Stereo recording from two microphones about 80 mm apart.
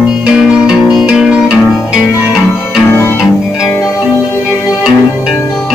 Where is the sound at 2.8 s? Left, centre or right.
Left.